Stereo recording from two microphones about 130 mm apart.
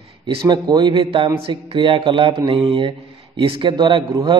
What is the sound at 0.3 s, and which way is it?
A man's voice, 35° right (ahead or behind).